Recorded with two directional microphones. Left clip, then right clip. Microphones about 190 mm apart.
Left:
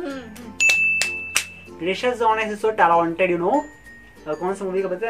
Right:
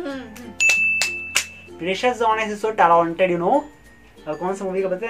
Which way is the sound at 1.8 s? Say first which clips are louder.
Even; 10° right (ahead or behind).